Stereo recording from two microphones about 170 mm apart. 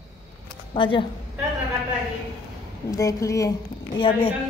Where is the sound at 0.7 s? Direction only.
30° left (ahead or behind).